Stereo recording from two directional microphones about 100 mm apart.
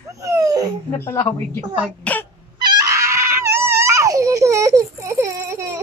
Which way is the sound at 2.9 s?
30° right (ahead or behind).